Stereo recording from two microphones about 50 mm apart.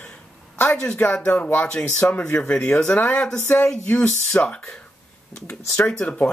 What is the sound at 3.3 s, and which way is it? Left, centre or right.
Speech, left.